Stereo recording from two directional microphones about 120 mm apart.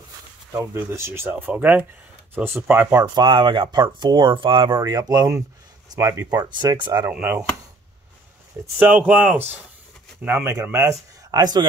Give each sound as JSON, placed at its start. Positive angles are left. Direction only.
{"t": 0.5, "sound": "speech", "side_deg": -20}
{"t": 3.0, "sound": "speech", "side_deg": -40}
{"t": 4.9, "sound": "speech", "side_deg": -30}
{"t": 7.1, "sound": "speech", "side_deg": -15}
{"t": 8.7, "sound": "speech", "side_deg": -15}